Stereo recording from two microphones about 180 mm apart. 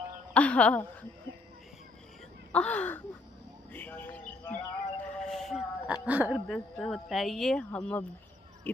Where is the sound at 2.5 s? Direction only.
10° left (ahead or behind); by 6.4 s 10° right (ahead or behind).